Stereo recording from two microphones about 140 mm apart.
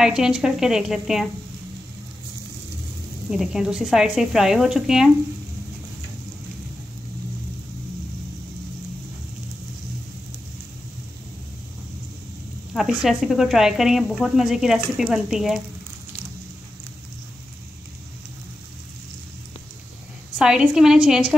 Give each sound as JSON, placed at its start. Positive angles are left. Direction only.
{"t": 0.0, "sound": "a woman's voice", "side_deg": -5}
{"t": 3.3, "sound": "a woman's voice", "side_deg": -5}
{"t": 12.7, "sound": "a woman's voice", "side_deg": 0}
{"t": 20.3, "sound": "a woman's voice", "side_deg": -5}